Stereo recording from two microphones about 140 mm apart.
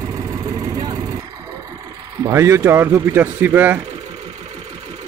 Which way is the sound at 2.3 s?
20° right (ahead or behind).